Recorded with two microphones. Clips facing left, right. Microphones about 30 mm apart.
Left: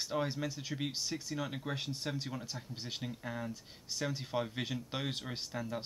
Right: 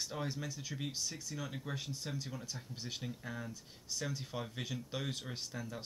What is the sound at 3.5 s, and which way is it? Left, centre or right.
Speech, left.